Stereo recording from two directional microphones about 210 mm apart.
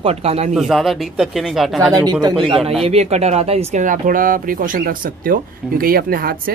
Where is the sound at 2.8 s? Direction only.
30° right (ahead or behind).